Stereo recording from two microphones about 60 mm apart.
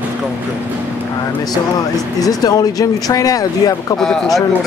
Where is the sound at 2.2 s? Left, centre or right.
Left.